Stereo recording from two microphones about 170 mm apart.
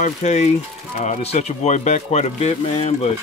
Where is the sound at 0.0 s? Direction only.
45° left (ahead or behind).